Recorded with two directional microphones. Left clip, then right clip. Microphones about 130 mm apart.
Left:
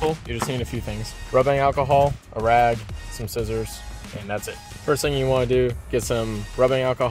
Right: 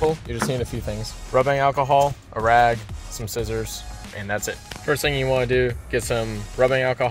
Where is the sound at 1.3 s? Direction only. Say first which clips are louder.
Even; 25° left (ahead or behind).